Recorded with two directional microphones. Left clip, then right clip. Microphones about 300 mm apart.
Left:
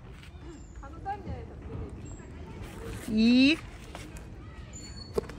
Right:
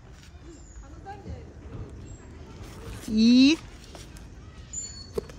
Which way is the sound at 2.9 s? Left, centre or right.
Centre.